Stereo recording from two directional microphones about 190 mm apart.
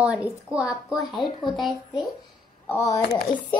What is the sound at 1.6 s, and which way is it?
Speech, centre (ahead or behind).